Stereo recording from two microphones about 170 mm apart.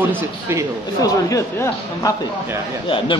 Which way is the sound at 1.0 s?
20° left (ahead or behind).